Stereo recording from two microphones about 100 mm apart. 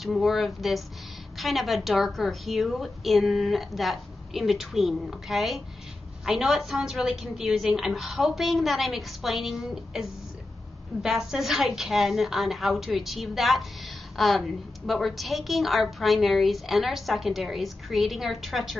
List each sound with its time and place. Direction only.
0.0 s a woman's voice: centre (ahead or behind)